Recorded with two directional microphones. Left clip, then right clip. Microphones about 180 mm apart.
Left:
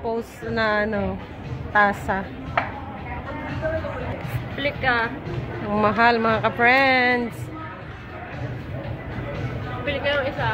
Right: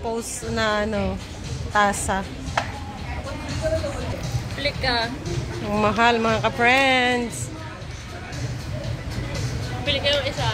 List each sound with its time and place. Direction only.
0.1 s a woman's voice: 10° right (ahead or behind)
4.6 s speech: 40° left (ahead or behind)
5.7 s speech: 5° right (ahead or behind)
9.8 s speech: 35° left (ahead or behind)